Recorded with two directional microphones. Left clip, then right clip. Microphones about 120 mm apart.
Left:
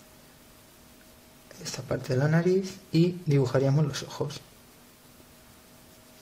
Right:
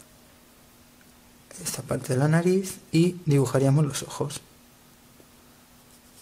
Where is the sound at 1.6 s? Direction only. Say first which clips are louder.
Right 2 dB; 30° right (ahead or behind).